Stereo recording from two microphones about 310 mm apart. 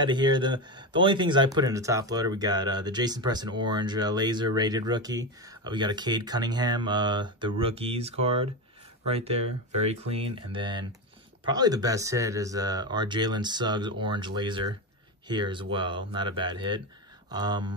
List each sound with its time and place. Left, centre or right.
0.0 s speech: centre